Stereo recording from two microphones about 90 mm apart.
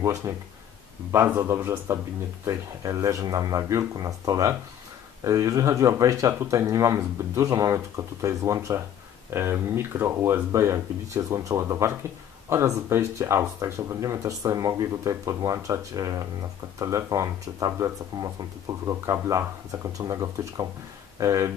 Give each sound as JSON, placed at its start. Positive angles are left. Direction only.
{"t": 0.0, "sound": "speech", "side_deg": -35}